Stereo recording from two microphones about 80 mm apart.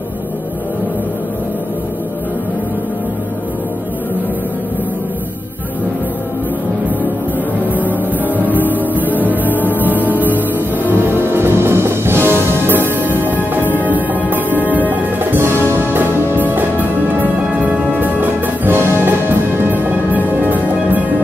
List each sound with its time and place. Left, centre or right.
7.7 s music: right
14.9 s music: right